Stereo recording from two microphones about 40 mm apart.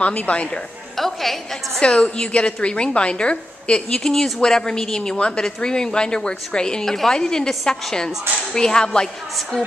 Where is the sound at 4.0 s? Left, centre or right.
Centre.